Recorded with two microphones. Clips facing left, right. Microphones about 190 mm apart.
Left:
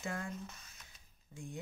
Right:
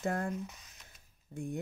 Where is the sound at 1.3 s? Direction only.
60° right (ahead or behind).